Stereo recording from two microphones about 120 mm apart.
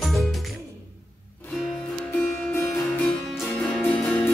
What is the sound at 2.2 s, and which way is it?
Music, 15° left (ahead or behind).